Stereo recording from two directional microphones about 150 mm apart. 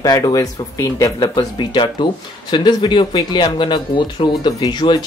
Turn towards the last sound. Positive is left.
turn(degrees=30)  # may be behind; listen again after turning